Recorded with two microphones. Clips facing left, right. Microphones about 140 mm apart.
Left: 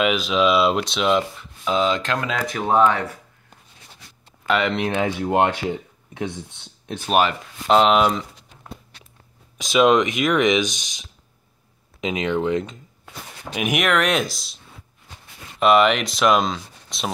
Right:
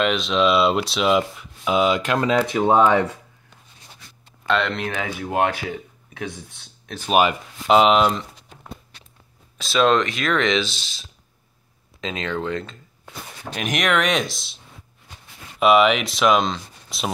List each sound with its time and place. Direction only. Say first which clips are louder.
0.0 s speech: even; 5° left (ahead or behind)
2.4 s speech: left 2 dB; 20° right (ahead or behind)
4.5 s speech: left 2 dB; 10° left (ahead or behind)
4.9 s speech: left 5 dB; 25° left (ahead or behind)
7.1 s speech: right 1 dB; 5° right (ahead or behind)
9.6 s speech: left 2 dB; 15° left (ahead or behind)
15.6 s speech: even; centre (ahead or behind)